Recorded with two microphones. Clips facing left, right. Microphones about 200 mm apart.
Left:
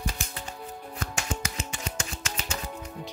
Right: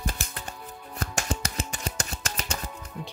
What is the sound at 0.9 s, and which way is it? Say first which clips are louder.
Music: right 3 dB; 40° right (ahead or behind).